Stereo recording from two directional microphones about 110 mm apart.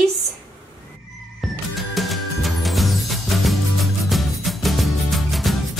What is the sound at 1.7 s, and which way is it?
Music, centre (ahead or behind).